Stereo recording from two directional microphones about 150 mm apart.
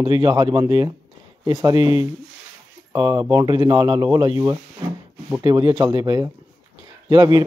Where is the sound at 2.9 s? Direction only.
30° right (ahead or behind).